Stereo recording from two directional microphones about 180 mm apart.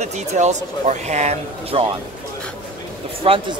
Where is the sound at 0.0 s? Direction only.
40° right (ahead or behind).